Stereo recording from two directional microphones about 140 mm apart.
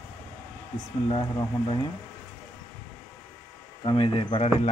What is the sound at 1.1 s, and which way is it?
Speech, 45° left (ahead or behind).